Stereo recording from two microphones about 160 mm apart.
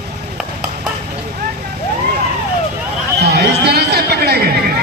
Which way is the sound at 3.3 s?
90° right.